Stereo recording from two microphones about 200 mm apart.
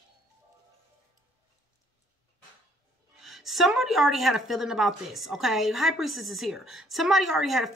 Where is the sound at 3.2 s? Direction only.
Centre (ahead or behind).